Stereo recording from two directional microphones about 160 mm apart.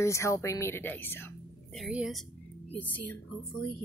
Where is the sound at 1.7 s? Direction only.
5° right (ahead or behind).